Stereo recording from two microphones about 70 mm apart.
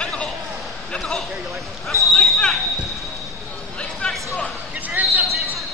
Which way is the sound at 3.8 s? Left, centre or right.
Centre.